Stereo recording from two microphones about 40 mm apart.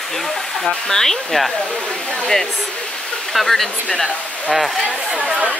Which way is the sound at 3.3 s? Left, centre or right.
Centre.